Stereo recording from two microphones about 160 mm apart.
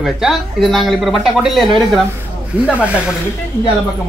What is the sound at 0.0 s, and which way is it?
Speech, centre (ahead or behind).